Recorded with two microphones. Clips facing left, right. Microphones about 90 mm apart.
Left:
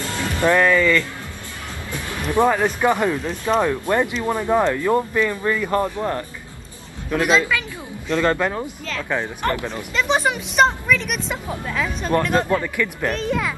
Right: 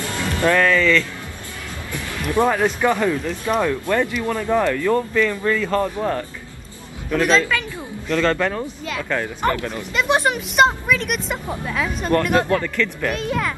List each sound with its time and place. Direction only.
0.0 s music: 20° left (ahead or behind)
2.5 s speech: 15° left (ahead or behind)
5.9 s a woman's voice: 5° left (ahead or behind)
9.4 s a woman's voice: 10° right (ahead or behind)
12.4 s speech: 15° left (ahead or behind)
13.1 s a woman's voice: 5° right (ahead or behind)